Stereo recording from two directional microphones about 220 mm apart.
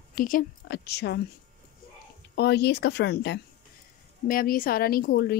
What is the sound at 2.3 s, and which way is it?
Speech, 50° left (ahead or behind).